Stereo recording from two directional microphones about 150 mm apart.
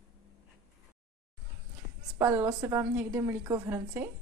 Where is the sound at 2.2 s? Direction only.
15° right (ahead or behind).